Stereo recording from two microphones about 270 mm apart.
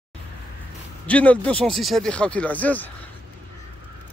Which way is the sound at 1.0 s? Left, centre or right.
Centre.